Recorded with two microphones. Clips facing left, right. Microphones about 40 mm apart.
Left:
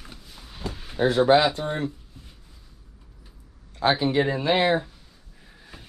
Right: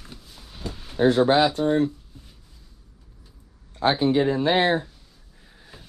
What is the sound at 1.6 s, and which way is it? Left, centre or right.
Speech, centre.